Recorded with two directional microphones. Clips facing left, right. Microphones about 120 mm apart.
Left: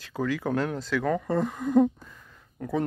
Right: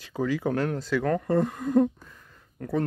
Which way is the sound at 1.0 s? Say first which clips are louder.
Right 2 dB; 5° left (ahead or behind).